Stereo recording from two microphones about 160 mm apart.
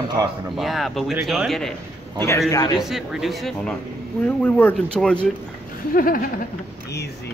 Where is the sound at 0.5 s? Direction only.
Centre (ahead or behind).